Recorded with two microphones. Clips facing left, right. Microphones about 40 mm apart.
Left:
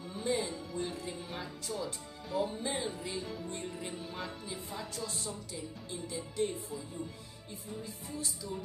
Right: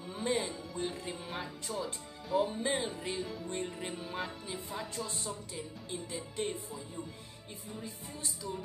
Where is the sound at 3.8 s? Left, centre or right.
Centre.